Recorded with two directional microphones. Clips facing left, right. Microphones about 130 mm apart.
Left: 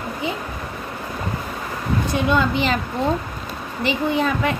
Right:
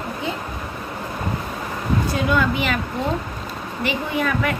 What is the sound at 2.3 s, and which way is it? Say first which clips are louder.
Speech: left 1 dB; 30° left (ahead or behind).